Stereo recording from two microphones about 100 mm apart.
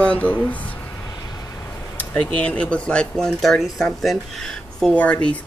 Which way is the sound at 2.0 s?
15° left (ahead or behind).